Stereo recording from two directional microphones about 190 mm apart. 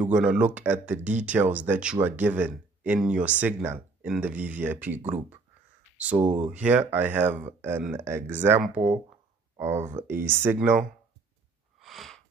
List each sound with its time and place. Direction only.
0.0 s speech: 5° right (ahead or behind)
6.1 s speech: 35° right (ahead or behind)
6.5 s speech: 10° right (ahead or behind)
11.8 s a sound: centre (ahead or behind)